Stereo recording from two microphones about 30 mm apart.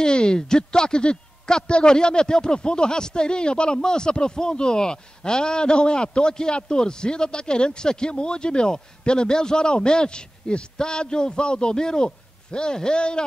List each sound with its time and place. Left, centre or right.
0.0 s a man's voice: left